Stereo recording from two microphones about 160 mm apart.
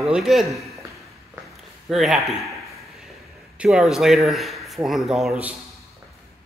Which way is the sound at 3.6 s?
5° right (ahead or behind).